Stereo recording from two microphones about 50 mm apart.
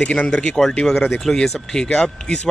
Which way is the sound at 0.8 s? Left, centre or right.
Centre.